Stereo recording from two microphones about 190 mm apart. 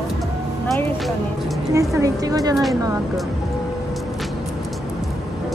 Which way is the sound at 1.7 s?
15° right (ahead or behind).